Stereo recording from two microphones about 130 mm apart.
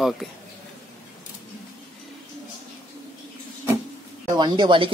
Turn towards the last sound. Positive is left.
turn(degrees=-40)  # may be behind; listen again after turning